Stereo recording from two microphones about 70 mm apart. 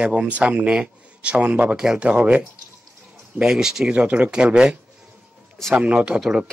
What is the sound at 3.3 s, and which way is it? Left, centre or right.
Speech, centre.